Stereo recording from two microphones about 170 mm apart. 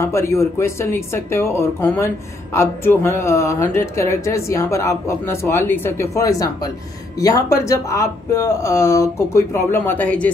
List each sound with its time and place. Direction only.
0.0 s speech: 15° left (ahead or behind)